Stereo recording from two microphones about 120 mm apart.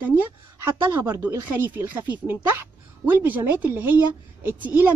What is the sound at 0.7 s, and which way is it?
Speech, 15° right (ahead or behind).